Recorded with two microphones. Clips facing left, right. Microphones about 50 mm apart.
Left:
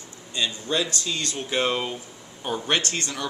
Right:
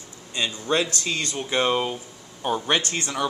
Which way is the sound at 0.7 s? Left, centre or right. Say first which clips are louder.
Right 3 dB; right.